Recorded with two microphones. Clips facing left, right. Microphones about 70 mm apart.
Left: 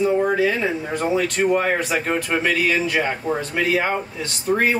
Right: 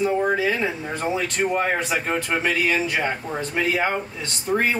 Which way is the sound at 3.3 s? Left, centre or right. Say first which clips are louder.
Left 6 dB; centre.